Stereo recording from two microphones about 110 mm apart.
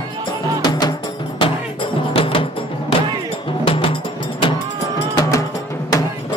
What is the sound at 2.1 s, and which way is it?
Music, 55° left (ahead or behind).